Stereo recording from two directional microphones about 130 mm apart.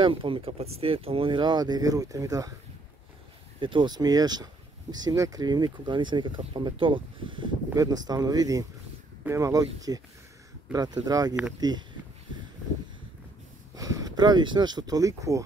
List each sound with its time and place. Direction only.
0.0 s speech: 40° right (ahead or behind)
3.5 s speech: 40° right (ahead or behind)
7.7 s speech: 30° right (ahead or behind)
13.7 s speech: 30° right (ahead or behind)